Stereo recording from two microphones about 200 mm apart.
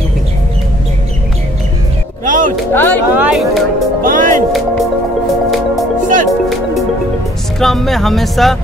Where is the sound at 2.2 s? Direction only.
40° right (ahead or behind).